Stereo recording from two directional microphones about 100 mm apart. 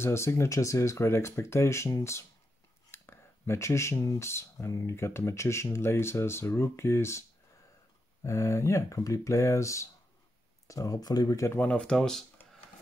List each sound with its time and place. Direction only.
0.0 s speech: 25° left (ahead or behind)
11.5 s speech: 15° left (ahead or behind)